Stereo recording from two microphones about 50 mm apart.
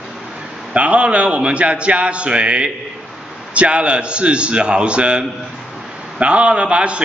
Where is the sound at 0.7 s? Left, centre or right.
Right.